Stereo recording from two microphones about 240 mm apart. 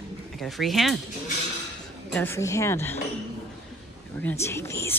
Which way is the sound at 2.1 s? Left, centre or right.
Centre.